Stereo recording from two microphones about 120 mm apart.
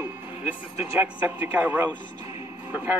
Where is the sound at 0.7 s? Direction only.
15° right (ahead or behind).